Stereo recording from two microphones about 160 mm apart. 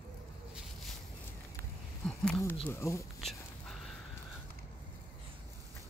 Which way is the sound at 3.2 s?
Centre (ahead or behind).